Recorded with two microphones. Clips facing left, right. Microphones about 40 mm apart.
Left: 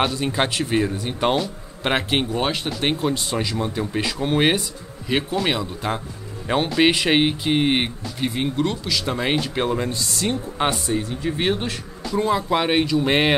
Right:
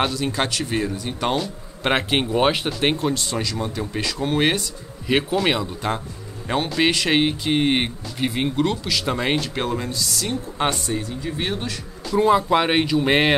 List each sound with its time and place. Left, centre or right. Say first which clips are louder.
0.1 s speech: left 1 dB; centre
1.4 s speech: even; centre
2.3 s speech: right 4 dB; centre
3.0 s speech: left 1 dB; centre
5.0 s speech: right 2 dB; centre
8.2 s speech: right 1 dB; centre
9.8 s speech: left 2 dB; left
10.6 s speech: left 1 dB; centre
11.2 s speech: left 5 dB; left
12.2 s speech: right 3 dB; centre